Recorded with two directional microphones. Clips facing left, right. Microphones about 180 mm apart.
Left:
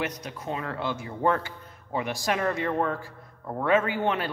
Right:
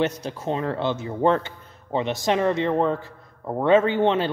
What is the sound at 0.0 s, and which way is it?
A man's voice, 30° right (ahead or behind).